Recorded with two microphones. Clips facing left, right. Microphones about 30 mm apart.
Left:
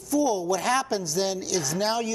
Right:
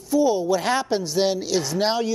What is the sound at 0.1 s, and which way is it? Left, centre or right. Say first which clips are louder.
A woman's voice: right 4 dB; right.